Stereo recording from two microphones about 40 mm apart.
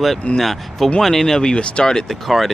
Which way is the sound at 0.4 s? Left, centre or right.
Centre.